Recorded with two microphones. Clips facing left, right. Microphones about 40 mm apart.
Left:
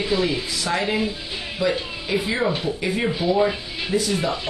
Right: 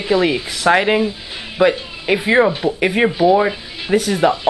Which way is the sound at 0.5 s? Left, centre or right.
Right.